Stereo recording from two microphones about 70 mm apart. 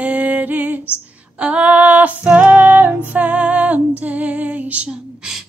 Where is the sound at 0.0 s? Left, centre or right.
Right.